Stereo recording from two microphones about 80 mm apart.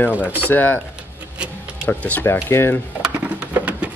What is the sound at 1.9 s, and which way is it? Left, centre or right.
Speech, left.